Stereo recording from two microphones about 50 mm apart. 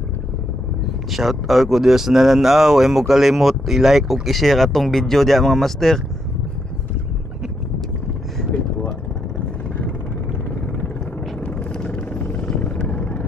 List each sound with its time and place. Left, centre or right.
1.1 s speech: centre
11.8 s vehicle: left